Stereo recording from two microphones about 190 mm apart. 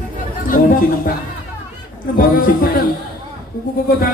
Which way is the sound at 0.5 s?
45° left (ahead or behind).